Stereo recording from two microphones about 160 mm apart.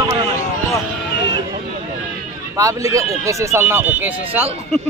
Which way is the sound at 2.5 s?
20° right (ahead or behind).